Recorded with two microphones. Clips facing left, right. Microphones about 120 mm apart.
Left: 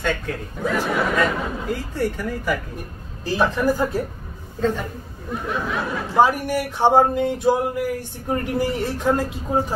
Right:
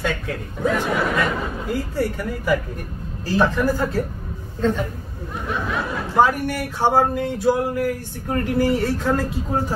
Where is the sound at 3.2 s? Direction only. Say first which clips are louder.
Right 1 dB; 15° left (ahead or behind).